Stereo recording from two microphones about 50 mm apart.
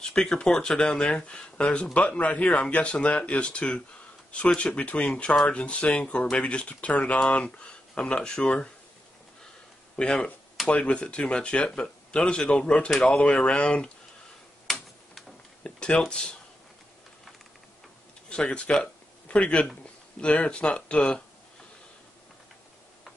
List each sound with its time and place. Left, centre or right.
0.0 s speech: centre
2.0 s speech: left
9.9 s speech: centre
15.6 s a sound: centre
16.1 s speech: centre
18.3 s speech: centre